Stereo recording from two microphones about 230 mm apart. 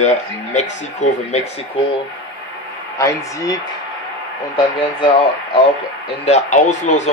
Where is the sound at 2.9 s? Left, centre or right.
Centre.